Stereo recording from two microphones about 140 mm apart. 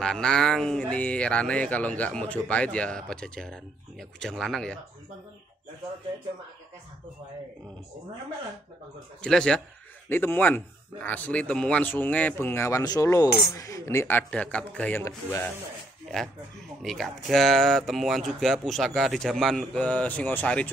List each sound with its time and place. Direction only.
0.0 s speech: 5° left (ahead or behind)
9.2 s speech: 5° left (ahead or behind)
16.8 s speech: centre (ahead or behind)